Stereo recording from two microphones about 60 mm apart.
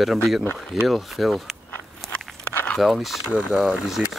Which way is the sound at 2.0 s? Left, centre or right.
Centre.